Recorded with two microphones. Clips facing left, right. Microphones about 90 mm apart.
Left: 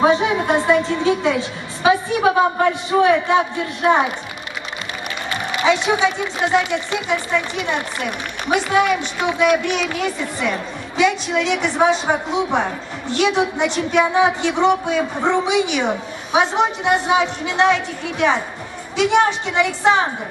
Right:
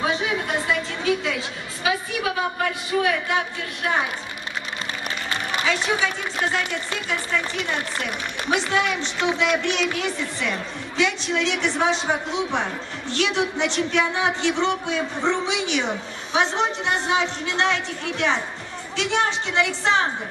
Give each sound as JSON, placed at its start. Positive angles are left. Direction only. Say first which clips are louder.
{"t": 0.0, "sound": "a woman's voice", "louder": "left 8 dB", "side_deg": 35}
{"t": 5.7, "sound": "a woman's voice", "louder": "left 7 dB", "side_deg": 15}